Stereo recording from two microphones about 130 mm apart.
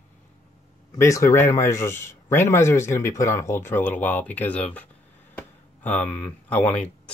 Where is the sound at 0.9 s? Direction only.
25° left (ahead or behind).